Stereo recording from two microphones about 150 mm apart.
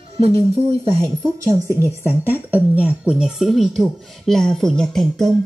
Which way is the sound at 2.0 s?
15° right (ahead or behind).